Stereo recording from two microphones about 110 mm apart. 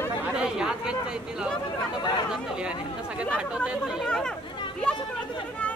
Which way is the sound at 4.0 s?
5° left (ahead or behind).